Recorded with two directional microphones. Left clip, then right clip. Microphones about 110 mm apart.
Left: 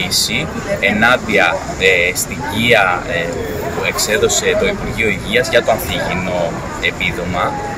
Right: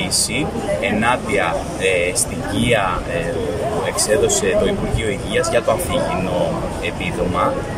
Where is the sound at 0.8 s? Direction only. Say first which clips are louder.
Left 8 dB; 25° right (ahead or behind).